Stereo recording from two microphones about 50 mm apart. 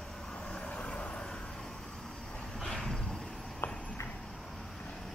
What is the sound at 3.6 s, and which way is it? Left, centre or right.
Clip-clop, left.